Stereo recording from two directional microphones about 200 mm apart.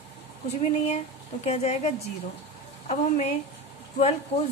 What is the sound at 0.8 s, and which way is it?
A woman's voice, 35° left (ahead or behind).